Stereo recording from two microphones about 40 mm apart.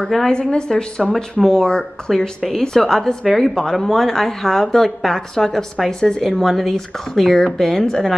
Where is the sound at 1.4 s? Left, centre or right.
Centre.